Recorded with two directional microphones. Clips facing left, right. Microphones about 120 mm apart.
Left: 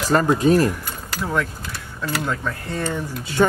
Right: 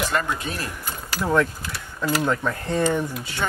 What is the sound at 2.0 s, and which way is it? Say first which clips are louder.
Speech: right 3 dB; 10° right (ahead or behind).